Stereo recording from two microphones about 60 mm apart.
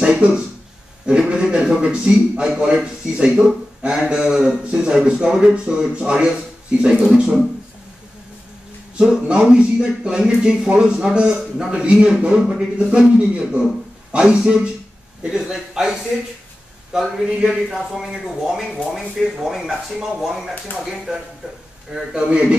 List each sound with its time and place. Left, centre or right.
0.0 s a man's voice: centre
8.9 s a man's voice: centre